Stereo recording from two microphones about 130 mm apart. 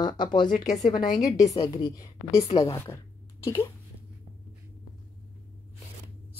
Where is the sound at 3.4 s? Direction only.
20° left (ahead or behind).